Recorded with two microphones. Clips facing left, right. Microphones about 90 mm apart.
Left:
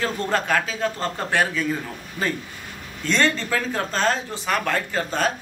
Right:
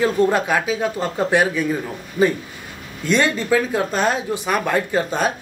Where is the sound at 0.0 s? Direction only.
15° right (ahead or behind).